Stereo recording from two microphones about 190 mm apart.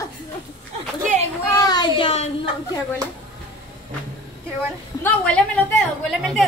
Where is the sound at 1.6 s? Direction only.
20° left (ahead or behind).